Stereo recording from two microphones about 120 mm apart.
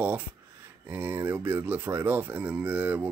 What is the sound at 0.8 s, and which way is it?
Speech, 15° right (ahead or behind).